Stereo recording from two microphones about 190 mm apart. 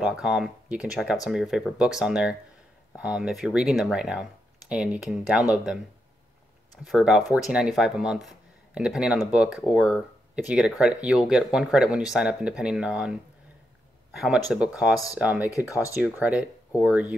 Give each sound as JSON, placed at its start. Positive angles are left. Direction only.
{"t": 0.0, "sound": "speech", "side_deg": -5}
{"t": 6.8, "sound": "speech", "side_deg": -5}
{"t": 15.6, "sound": "speech", "side_deg": 15}
{"t": 16.0, "sound": "speech", "side_deg": -5}